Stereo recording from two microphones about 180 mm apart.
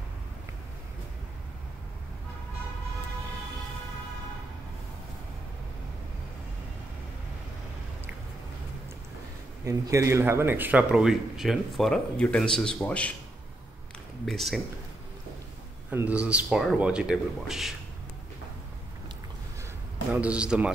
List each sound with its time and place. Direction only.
9.7 s speech: 15° right (ahead or behind); by 13.1 s 5° left (ahead or behind)
14.2 s speech: centre (ahead or behind)
15.9 s speech: 10° right (ahead or behind)
20.1 s speech: 5° right (ahead or behind)